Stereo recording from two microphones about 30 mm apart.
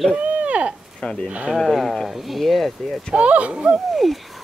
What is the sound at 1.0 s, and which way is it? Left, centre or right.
Speech, left.